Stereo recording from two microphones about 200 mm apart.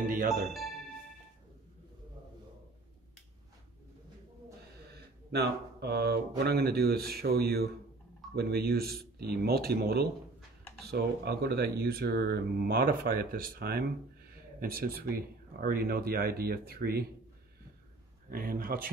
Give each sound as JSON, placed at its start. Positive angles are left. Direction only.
{"t": 0.5, "sound": "speech", "side_deg": 0}
{"t": 4.9, "sound": "speech", "side_deg": -55}
{"t": 18.3, "sound": "speech", "side_deg": -45}